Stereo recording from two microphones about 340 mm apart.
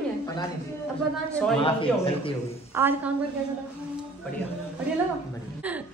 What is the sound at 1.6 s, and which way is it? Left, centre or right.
Speech, centre.